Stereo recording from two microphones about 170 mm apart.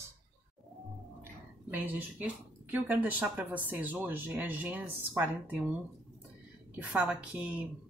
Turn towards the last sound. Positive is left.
turn(degrees=-5)  # may be behind; listen again after turning